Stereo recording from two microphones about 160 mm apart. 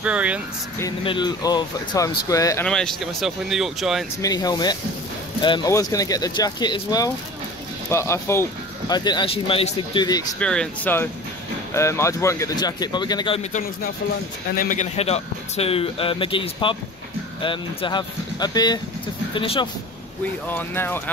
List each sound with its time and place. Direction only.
0.0 s speech: 10° right (ahead or behind)
1.0 s speech: 30° left (ahead or behind)
2.6 s speech: 5° left (ahead or behind)
4.2 s speech: 25° left (ahead or behind)
10.4 s speech: 5° left (ahead or behind); by 13.4 s 30° left (ahead or behind)
14.5 s speech: 55° left (ahead or behind); by 19.7 s 35° left (ahead or behind)
20.4 s speech: 10° left (ahead or behind)